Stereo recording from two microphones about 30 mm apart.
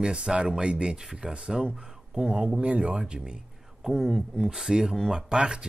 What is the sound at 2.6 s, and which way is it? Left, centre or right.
Speech, right.